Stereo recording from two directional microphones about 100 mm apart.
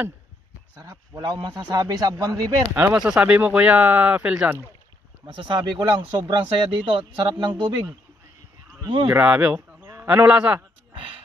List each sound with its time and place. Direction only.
0.7 s a man's voice: 35° right (ahead or behind)
2.7 s speech: 20° right (ahead or behind)
5.2 s speech: 55° right (ahead or behind)
9.0 s speech: 15° right (ahead or behind)